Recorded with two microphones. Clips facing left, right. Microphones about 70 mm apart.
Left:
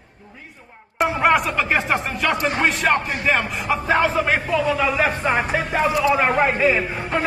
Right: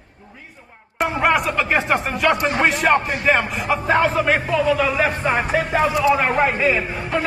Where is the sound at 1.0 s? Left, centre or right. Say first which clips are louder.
Left 1 dB; centre.